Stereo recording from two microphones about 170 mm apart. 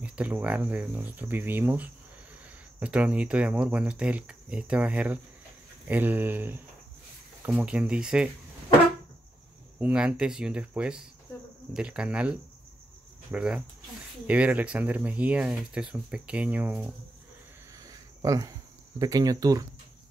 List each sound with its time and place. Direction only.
0.0 s speech: 5° right (ahead or behind)
9.8 s speech: 5° right (ahead or behind)
17.7 s a sound: 20° right (ahead or behind)